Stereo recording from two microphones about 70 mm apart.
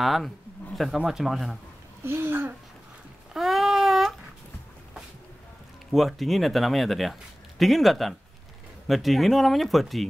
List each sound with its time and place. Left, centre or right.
0.0 s speech: centre
2.0 s speech: right
3.3 s a sound: centre
5.9 s speech: centre